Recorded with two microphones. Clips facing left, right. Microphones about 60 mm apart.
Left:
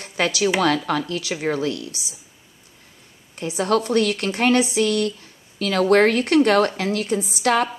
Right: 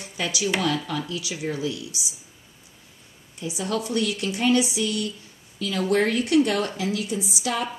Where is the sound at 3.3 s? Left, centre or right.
Left.